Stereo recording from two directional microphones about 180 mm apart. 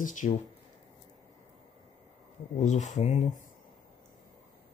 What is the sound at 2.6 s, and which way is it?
Speech, 40° left (ahead or behind).